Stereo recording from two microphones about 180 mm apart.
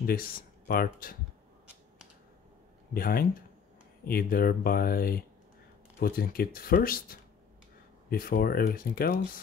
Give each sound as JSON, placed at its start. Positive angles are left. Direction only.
{"t": 0.0, "sound": "speech", "side_deg": 55}
{"t": 2.9, "sound": "speech", "side_deg": 55}